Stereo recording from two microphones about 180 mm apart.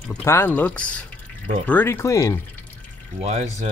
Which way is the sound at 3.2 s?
35° right (ahead or behind).